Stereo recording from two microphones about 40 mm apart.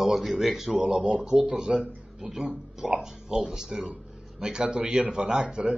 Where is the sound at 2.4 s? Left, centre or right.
Right.